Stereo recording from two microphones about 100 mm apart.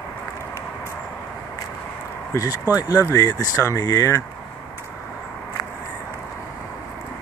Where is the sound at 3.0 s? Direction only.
30° left (ahead or behind).